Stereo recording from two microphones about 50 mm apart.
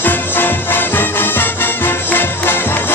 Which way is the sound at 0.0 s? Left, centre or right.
Left.